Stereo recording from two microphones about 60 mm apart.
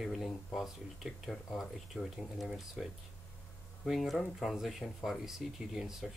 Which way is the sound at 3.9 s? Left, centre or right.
Centre.